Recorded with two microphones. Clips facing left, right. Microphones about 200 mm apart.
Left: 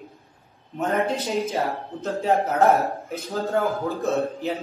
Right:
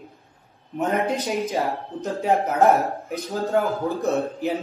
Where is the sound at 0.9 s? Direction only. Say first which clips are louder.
Even; 15° right (ahead or behind).